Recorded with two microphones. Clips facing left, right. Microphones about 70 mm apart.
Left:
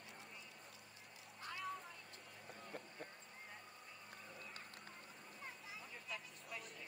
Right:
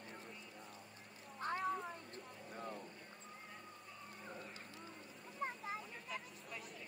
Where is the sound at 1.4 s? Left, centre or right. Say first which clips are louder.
Right 8 dB; right.